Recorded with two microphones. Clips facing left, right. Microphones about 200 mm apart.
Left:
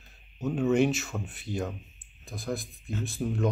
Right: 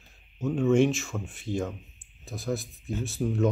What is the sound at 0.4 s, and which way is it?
Speech, centre (ahead or behind).